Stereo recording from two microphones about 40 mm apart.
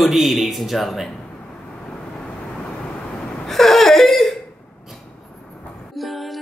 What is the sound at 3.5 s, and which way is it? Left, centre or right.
Laughter, centre.